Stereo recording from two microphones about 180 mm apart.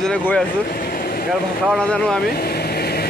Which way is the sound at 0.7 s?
55° left (ahead or behind).